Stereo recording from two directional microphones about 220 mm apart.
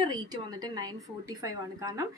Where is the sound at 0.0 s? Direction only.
20° right (ahead or behind).